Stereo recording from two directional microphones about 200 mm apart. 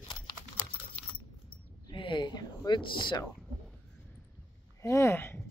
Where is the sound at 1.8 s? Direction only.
25° left (ahead or behind).